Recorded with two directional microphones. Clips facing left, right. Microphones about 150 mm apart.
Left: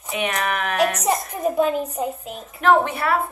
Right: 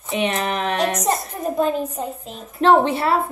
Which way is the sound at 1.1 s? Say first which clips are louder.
Left 1 dB; 5° left (ahead or behind).